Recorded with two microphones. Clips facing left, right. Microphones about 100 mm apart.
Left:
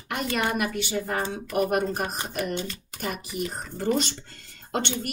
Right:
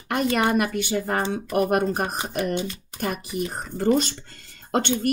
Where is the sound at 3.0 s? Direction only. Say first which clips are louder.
Right 4 dB; 45° right (ahead or behind).